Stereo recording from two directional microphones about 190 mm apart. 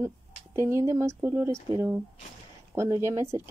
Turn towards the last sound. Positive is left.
turn(degrees=-15)  # may be behind; listen again after turning